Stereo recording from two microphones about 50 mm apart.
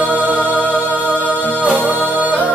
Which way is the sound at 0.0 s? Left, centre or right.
Right.